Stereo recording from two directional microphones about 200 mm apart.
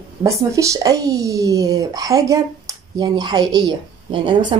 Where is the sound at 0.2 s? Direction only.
15° right (ahead or behind).